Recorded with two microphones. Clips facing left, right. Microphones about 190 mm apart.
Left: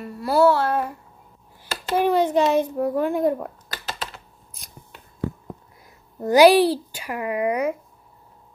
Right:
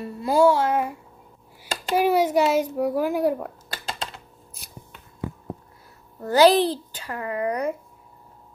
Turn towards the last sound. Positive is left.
turn(degrees=10)  # may be behind; listen again after turning